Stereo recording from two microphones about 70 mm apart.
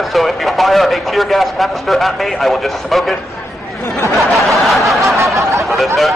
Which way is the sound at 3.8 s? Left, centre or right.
Left.